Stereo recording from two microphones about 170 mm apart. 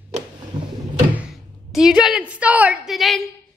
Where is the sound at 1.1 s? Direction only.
5° right (ahead or behind).